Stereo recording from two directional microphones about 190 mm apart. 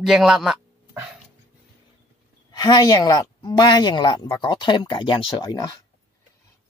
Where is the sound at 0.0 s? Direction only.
Centre (ahead or behind).